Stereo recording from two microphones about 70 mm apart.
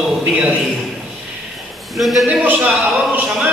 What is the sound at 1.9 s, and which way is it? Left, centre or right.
Speech, centre.